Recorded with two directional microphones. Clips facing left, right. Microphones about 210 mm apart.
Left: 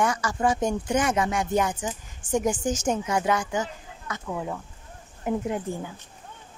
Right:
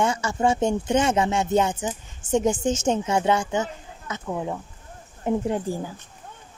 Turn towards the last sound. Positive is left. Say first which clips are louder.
# right 3 dB
turn(degrees=-35)  # may be behind; listen again after turning